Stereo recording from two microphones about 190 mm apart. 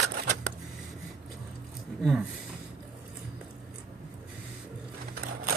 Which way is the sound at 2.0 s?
Centre (ahead or behind).